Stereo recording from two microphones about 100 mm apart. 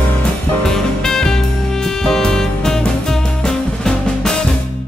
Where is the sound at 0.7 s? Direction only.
5° left (ahead or behind).